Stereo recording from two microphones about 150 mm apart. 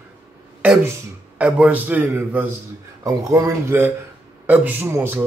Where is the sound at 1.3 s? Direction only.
10° right (ahead or behind).